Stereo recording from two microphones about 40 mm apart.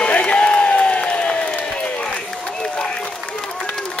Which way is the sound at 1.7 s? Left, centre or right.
Left.